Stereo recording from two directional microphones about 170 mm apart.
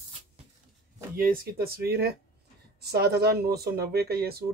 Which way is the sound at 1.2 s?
60° right (ahead or behind).